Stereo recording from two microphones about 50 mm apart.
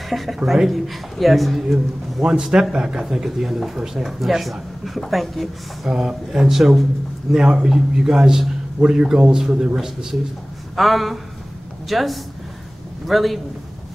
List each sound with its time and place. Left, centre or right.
0.1 s speech: centre
2.2 s a man's voice: centre
5.9 s a man's voice: centre
10.8 s speech: centre